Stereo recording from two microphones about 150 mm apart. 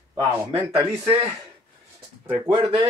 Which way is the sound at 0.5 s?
40° right (ahead or behind).